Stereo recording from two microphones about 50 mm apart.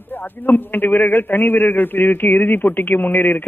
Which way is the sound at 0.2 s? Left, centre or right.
Left.